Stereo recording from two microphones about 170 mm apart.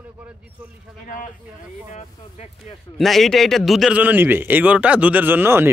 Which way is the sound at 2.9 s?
Centre (ahead or behind).